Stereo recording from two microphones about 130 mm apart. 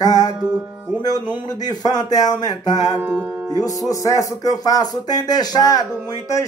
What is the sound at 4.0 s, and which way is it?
Speech, 25° left (ahead or behind).